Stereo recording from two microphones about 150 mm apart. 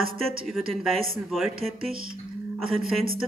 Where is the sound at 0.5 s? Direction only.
Centre (ahead or behind).